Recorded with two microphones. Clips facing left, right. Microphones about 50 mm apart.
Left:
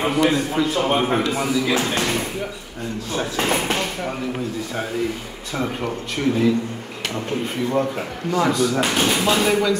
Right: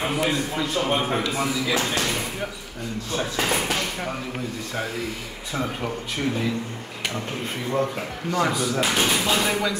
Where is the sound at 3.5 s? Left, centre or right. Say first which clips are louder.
Left 4 dB; left.